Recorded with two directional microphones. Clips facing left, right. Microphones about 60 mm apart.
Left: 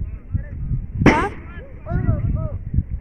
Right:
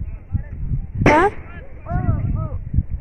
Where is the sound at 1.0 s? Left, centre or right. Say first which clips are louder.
Right 2 dB; centre.